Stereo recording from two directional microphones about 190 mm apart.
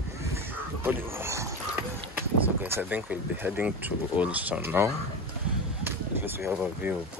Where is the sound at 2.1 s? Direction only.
10° right (ahead or behind).